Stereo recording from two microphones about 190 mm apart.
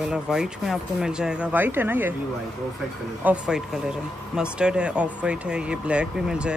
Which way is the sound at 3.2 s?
5° right (ahead or behind).